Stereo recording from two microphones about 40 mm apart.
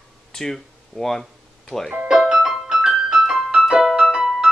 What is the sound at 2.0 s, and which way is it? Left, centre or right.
Music, centre.